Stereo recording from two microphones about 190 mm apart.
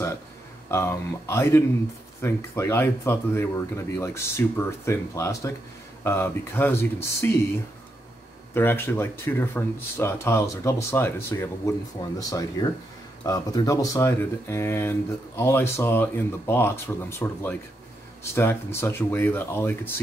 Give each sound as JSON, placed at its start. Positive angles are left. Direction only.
{"t": 0.7, "sound": "speech", "side_deg": 15}
{"t": 8.5, "sound": "speech", "side_deg": 10}